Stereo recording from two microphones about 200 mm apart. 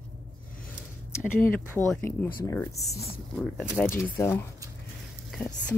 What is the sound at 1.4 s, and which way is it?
Speech, 10° left (ahead or behind).